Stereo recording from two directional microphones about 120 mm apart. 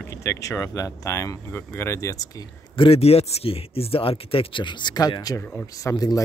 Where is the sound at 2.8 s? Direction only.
55° left (ahead or behind); by 6.2 s 30° left (ahead or behind).